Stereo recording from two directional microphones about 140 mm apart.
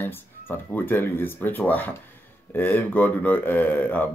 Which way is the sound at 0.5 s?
15° left (ahead or behind).